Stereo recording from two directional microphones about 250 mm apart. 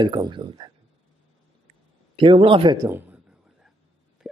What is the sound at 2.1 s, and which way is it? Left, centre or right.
A man's voice, centre.